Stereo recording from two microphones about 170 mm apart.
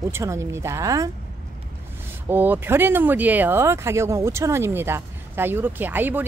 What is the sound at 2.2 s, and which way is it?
Speech, 10° right (ahead or behind).